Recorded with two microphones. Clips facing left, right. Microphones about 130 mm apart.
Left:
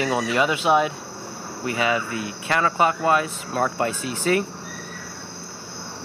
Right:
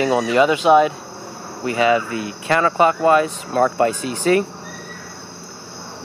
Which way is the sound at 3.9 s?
10° left (ahead or behind).